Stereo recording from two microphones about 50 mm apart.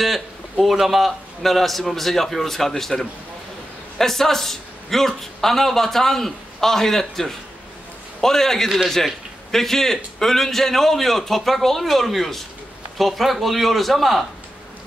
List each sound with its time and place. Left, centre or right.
0.0 s a man's voice: centre